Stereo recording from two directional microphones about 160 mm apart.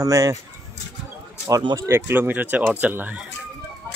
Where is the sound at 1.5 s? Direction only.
25° right (ahead or behind).